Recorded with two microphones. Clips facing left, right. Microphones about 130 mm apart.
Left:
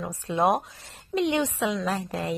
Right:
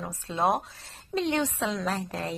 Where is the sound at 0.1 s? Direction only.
15° left (ahead or behind).